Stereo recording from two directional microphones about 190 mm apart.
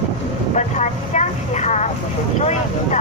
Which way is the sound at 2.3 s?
35° left (ahead or behind).